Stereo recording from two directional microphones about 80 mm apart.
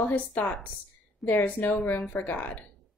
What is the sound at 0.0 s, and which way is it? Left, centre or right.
A woman's voice, centre.